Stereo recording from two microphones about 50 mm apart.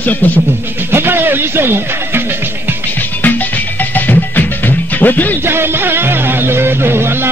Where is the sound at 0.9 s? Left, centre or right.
Right.